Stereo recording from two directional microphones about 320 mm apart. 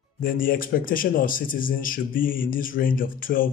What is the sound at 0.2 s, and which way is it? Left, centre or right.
A man's voice, left.